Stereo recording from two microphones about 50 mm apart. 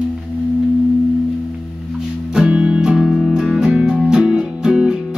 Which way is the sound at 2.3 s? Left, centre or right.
Centre.